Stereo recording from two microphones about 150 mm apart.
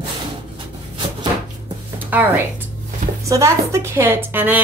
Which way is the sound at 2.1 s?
10° right (ahead or behind).